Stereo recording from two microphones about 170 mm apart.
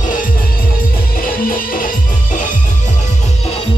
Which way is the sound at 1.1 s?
55° left (ahead or behind).